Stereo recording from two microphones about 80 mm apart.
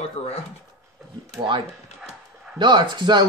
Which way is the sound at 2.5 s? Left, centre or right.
Right.